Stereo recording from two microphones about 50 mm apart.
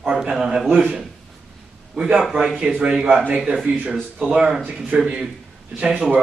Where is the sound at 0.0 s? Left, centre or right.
Centre.